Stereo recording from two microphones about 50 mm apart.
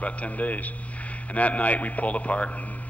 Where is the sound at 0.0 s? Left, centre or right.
Left.